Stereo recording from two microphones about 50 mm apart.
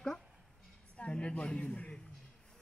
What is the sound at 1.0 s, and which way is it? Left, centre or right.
Speech, left.